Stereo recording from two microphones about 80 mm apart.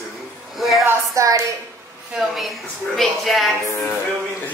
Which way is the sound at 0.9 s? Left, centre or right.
Right.